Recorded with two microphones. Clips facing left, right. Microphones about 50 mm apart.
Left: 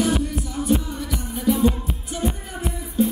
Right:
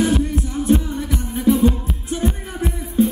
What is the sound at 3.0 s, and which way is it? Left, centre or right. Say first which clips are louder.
Music: right 4 dB; right.